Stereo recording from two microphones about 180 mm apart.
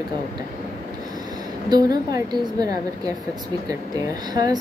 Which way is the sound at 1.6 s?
25° right (ahead or behind).